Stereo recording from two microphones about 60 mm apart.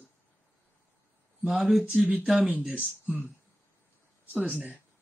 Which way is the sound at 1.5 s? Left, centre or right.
Centre.